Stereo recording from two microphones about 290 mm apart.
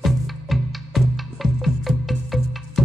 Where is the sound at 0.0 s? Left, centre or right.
Centre.